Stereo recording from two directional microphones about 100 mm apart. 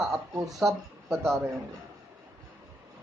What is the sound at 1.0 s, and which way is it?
Speech, 25° right (ahead or behind).